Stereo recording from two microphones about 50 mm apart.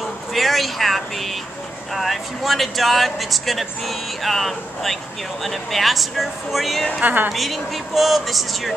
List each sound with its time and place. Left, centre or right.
0.3 s a sound: centre
2.0 s speech: centre
7.0 s a woman's voice: right
7.3 s speech: centre